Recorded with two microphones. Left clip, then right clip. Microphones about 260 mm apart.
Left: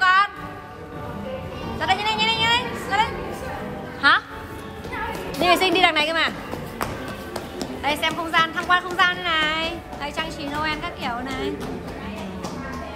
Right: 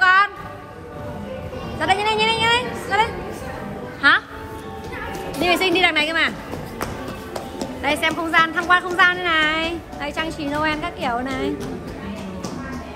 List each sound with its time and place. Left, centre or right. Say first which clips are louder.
0.0 s music: right 3 dB; centre
1.8 s music: right 3 dB; centre
5.4 s music: even; centre
7.8 s speech: right 3 dB; centre